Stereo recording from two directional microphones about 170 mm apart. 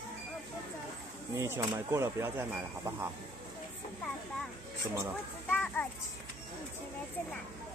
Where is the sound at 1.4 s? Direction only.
15° right (ahead or behind).